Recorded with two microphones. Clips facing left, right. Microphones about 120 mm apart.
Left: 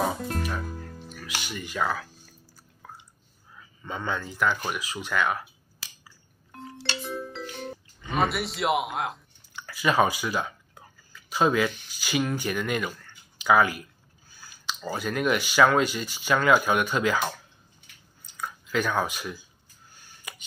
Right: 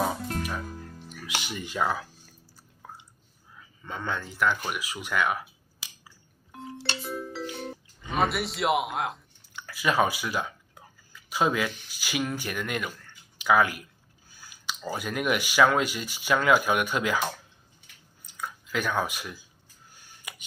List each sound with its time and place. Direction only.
0.0 s music: centre (ahead or behind)
1.0 s music: 20° right (ahead or behind)
1.8 s speech: 15° right (ahead or behind)
3.8 s speech: 5° left (ahead or behind)
6.5 s marimba: centre (ahead or behind)
7.5 s speech: centre (ahead or behind)
18.2 s chewing: 5° right (ahead or behind)